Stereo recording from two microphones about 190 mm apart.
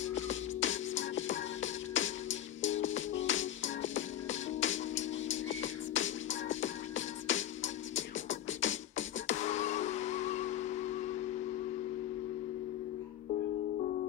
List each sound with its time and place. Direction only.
0.0 s music: 80° left
9.3 s music: 40° left (ahead or behind)